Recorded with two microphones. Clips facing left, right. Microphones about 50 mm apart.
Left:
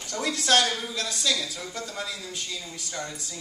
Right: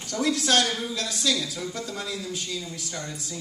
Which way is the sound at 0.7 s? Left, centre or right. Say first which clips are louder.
Right 1 dB; centre.